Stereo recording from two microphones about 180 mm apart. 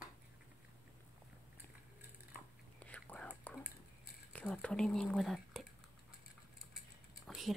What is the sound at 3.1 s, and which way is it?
Whispering, 10° left (ahead or behind).